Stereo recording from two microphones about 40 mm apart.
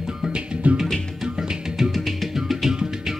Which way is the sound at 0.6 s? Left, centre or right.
Right.